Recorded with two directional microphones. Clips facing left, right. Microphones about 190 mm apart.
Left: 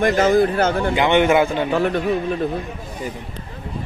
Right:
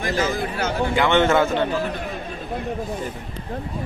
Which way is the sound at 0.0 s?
55° left (ahead or behind).